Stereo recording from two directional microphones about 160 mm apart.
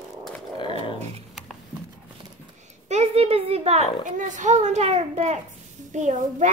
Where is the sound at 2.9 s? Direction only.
45° right (ahead or behind).